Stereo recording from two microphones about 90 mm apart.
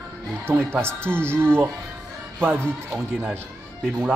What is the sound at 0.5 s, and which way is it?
A man's voice, 25° right (ahead or behind).